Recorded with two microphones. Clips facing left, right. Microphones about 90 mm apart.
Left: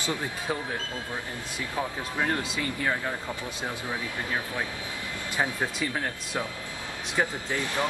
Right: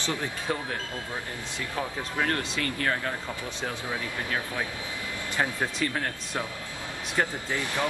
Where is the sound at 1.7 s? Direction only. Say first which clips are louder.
Even; 10° left (ahead or behind).